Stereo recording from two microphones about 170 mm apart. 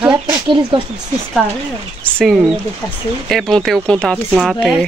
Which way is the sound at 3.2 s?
Centre (ahead or behind).